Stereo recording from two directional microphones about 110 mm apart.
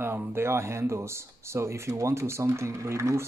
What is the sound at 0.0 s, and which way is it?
Speech, 20° right (ahead or behind).